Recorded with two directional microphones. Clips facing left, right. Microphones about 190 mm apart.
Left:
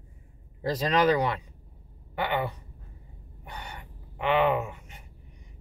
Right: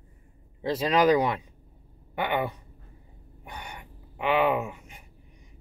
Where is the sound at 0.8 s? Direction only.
10° right (ahead or behind).